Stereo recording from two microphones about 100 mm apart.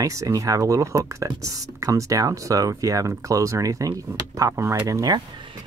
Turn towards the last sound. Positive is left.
turn(degrees=-40)  # may be behind; listen again after turning